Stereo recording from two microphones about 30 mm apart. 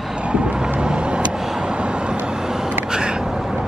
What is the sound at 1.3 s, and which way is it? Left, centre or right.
Vehicle, centre.